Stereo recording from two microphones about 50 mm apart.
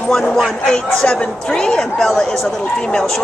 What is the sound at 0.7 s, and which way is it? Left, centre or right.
Speech, centre.